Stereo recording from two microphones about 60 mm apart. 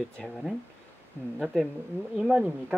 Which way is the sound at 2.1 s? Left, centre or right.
Centre.